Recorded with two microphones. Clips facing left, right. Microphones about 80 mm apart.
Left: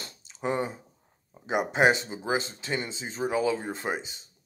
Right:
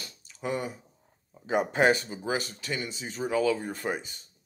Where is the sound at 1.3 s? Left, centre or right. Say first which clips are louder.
Right 1 dB; centre.